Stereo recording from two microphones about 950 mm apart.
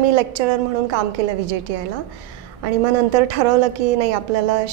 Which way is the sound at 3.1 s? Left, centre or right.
Right.